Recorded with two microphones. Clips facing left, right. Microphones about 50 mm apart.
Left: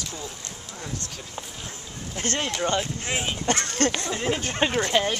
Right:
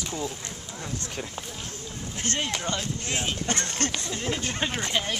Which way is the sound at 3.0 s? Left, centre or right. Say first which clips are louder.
Left 2 dB; centre.